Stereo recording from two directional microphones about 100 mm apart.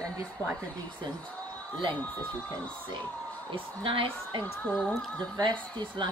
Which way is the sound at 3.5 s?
60° right (ahead or behind).